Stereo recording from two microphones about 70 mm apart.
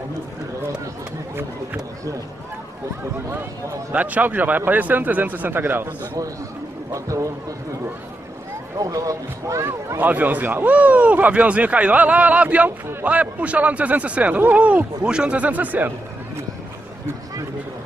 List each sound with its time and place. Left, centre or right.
3.9 s speech: right
6.9 s speech: right
8.7 s speech: right
9.9 s speech: right